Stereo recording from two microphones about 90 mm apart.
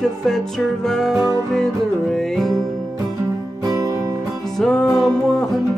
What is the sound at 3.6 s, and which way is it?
Music, 40° right (ahead or behind).